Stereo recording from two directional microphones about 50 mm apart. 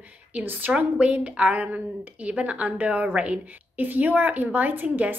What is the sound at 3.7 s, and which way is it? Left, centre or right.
A woman's voice, right.